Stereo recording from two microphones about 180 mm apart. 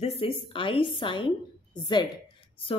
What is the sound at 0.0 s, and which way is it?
A woman's voice, 35° left (ahead or behind).